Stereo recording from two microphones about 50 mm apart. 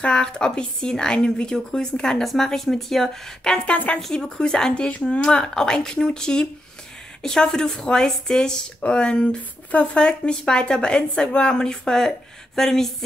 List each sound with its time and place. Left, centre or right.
0.0 s speech: centre
3.6 s speech: left
4.1 s speech: centre